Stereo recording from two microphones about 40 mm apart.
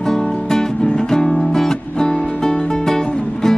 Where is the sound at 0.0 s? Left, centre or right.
Centre.